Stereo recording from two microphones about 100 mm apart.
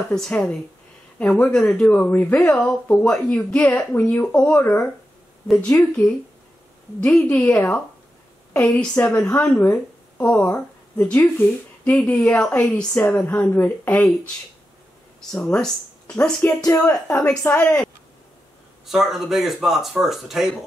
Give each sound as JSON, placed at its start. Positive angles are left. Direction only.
{"t": 0.1, "sound": "speech", "side_deg": 5}
{"t": 5.8, "sound": "speech", "side_deg": 5}
{"t": 18.9, "sound": "speech", "side_deg": -5}